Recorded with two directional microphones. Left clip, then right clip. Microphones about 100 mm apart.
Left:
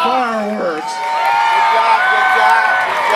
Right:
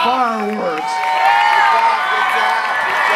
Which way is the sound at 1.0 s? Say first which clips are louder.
Right 1 dB; 20° right (ahead or behind).